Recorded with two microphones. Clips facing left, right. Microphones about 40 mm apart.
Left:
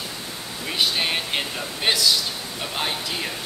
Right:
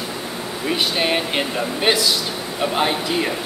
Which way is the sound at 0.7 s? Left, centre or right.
Centre.